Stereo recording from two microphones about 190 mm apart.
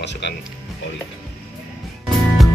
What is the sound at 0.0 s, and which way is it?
Music, 65° left (ahead or behind).